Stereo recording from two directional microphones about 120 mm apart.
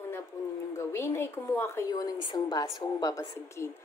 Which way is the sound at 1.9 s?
30° left (ahead or behind).